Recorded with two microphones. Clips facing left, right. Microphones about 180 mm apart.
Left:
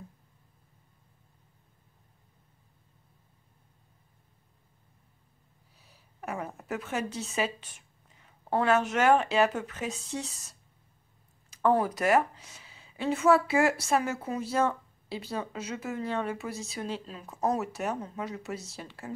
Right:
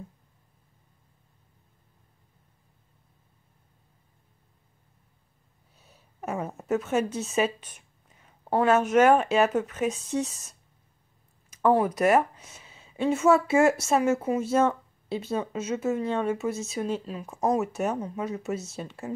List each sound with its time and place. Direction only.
5.9 s a woman's voice: 20° right (ahead or behind)
11.5 s speech: 15° right (ahead or behind)